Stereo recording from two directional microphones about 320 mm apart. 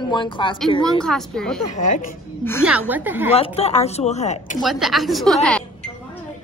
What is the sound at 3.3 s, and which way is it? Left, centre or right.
Speech, centre.